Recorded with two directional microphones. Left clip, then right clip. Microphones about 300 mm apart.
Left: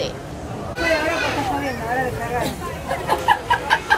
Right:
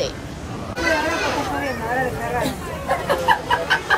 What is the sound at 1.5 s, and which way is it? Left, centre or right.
Speech, centre.